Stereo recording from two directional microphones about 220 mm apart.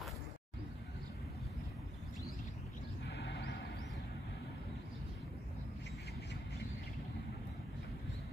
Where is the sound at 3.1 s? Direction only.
50° left (ahead or behind).